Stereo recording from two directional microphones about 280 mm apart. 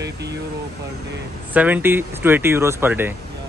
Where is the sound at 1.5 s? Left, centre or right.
Centre.